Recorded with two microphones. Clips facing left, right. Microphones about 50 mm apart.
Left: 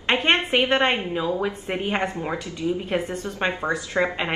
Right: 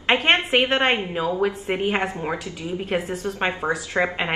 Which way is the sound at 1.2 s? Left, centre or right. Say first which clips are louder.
Right 2 dB; right.